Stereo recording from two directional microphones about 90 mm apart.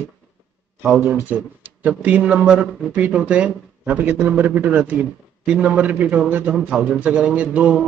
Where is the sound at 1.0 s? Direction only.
25° right (ahead or behind).